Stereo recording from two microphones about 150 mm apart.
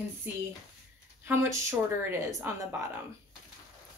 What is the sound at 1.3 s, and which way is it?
Speech, 20° right (ahead or behind).